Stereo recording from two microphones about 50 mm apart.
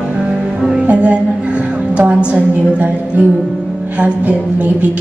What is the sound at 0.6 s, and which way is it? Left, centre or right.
Music, centre.